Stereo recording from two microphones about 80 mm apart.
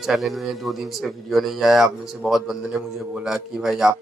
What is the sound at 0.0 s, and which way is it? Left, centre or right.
A man's voice, centre.